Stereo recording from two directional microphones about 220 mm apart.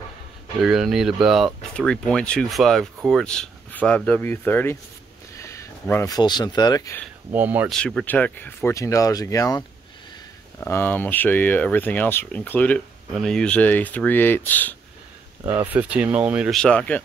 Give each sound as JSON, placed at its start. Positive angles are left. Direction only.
{"t": 0.6, "sound": "speech", "side_deg": 0}
{"t": 7.3, "sound": "speech", "side_deg": -10}
{"t": 7.7, "sound": "speech", "side_deg": 5}
{"t": 15.4, "sound": "speech", "side_deg": -10}